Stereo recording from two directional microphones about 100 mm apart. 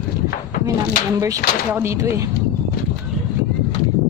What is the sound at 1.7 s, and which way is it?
Speech, 25° right (ahead or behind).